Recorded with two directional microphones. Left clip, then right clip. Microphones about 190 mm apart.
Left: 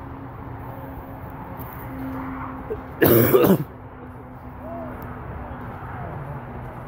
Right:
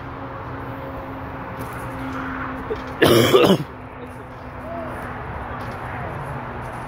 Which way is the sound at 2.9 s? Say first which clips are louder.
Right 2 dB; 15° left (ahead or behind).